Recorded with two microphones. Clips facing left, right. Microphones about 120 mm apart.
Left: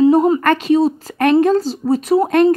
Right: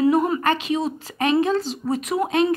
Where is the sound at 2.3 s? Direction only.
55° left (ahead or behind).